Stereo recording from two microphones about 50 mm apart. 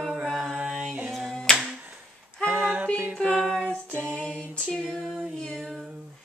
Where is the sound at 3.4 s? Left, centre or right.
Centre.